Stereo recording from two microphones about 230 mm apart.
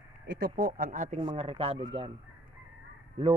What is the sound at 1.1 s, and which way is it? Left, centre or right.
Speech, right.